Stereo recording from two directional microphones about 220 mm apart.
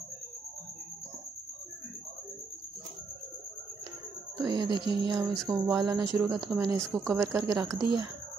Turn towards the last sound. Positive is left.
turn(degrees=-15)  # may be behind; listen again after turning